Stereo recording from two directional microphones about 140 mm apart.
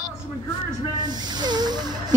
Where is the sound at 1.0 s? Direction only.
30° right (ahead or behind).